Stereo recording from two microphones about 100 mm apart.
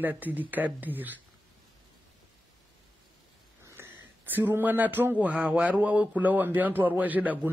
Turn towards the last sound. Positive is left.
turn(degrees=-15)  # may be behind; listen again after turning